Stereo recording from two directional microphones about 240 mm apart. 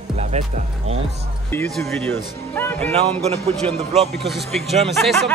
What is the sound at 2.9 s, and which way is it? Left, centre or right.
Speech, right.